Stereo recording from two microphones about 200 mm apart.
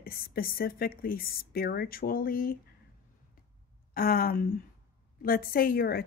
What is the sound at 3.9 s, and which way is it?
Speech, 45° left (ahead or behind).